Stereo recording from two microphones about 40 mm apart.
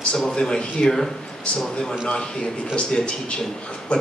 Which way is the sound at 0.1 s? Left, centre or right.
Centre.